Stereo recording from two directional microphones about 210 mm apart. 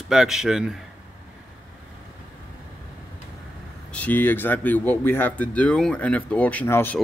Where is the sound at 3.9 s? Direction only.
10° left (ahead or behind).